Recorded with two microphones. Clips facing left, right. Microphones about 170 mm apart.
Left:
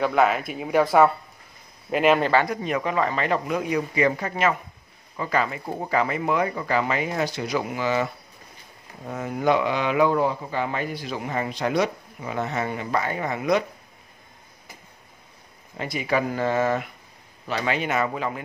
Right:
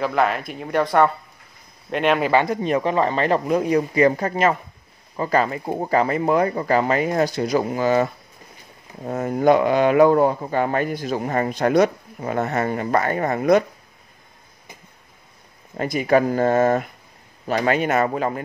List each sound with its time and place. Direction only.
0.0 s speech: centre (ahead or behind)
2.5 s speech: 30° right (ahead or behind); by 13.7 s 50° right (ahead or behind)
15.8 s speech: 45° right (ahead or behind)